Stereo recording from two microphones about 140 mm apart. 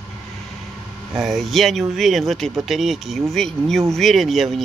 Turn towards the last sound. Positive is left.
turn(degrees=0)  # may be behind; listen again after turning